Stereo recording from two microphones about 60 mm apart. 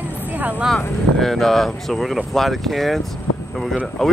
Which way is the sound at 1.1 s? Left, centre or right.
Centre.